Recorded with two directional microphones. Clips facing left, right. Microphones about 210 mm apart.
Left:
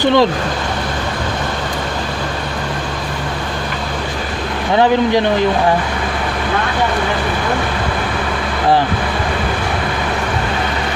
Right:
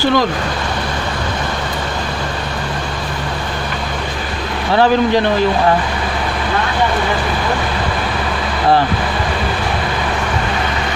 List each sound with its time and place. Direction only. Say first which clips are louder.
0.0 s speech: left 3 dB; 25° left (ahead or behind)